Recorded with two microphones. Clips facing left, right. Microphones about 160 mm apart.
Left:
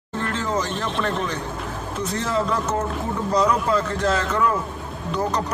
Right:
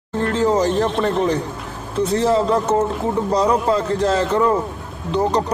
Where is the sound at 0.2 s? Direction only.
40° right (ahead or behind).